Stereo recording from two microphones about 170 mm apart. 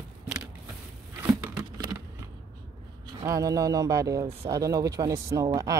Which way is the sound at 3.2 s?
20° right (ahead or behind).